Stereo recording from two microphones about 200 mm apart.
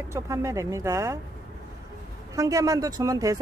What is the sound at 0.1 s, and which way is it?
Speech, 15° right (ahead or behind).